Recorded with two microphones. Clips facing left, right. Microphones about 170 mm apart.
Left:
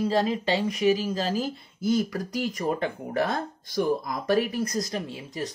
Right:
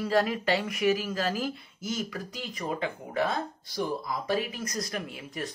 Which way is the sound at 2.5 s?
45° left (ahead or behind).